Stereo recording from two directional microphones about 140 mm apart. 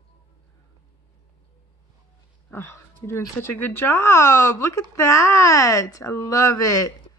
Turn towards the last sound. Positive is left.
turn(degrees=25)  # may be behind; listen again after turning